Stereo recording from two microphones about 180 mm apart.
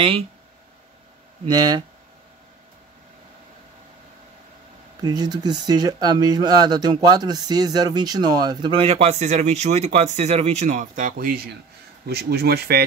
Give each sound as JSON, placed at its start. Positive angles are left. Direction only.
{"t": 1.4, "sound": "speech", "side_deg": -20}
{"t": 5.0, "sound": "speech", "side_deg": -20}
{"t": 12.1, "sound": "speech", "side_deg": -60}